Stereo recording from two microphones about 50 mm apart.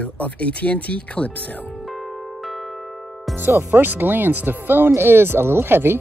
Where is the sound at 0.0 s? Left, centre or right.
Left.